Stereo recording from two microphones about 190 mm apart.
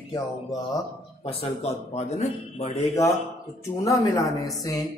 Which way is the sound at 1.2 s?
30° left (ahead or behind).